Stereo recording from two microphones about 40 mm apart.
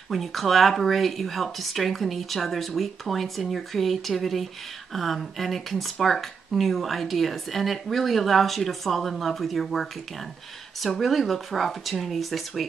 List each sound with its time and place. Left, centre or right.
0.1 s speech: centre